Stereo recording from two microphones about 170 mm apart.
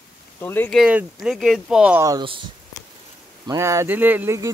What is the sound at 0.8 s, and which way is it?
Speech, 5° right (ahead or behind).